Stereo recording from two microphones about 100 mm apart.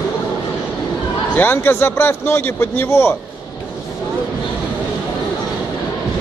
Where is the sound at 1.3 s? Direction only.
20° left (ahead or behind).